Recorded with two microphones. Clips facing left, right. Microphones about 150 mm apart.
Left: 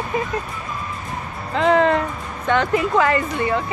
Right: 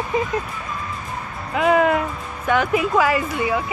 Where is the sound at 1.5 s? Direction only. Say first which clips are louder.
Left 1 dB; 10° right (ahead or behind).